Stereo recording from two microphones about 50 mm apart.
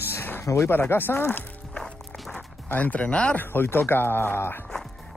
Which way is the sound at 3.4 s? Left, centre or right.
Left.